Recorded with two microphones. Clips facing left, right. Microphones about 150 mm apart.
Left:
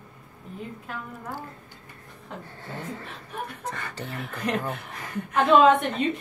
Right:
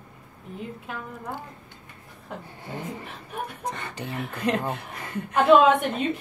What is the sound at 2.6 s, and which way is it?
Speech, 15° right (ahead or behind).